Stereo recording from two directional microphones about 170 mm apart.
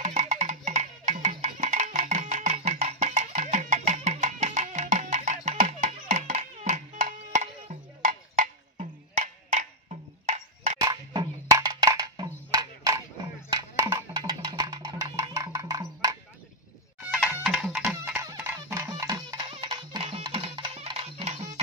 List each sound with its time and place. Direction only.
0.0 s music: 45° right (ahead or behind)
10.8 s wood block: 25° right (ahead or behind)
12.5 s a sound: 20° right (ahead or behind)
13.5 s music: 20° right (ahead or behind)
17.1 s chicken: 5° right (ahead or behind)
18.1 s music: 15° right (ahead or behind)
20.1 s music: 35° right (ahead or behind)